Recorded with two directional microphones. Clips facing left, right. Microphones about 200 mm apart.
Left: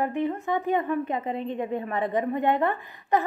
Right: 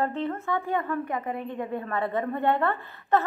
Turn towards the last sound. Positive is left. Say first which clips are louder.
# even
turn(degrees=15)  # may be behind; listen again after turning